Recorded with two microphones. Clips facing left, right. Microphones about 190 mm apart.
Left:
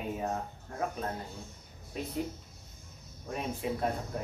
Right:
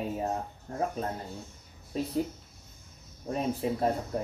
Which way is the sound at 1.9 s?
35° right (ahead or behind).